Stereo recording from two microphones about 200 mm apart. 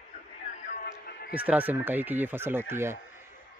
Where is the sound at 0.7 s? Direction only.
45° left (ahead or behind).